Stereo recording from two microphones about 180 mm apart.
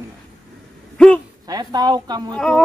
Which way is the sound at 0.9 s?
5° left (ahead or behind).